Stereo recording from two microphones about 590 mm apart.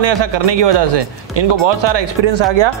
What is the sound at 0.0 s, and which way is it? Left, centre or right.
Speech, right.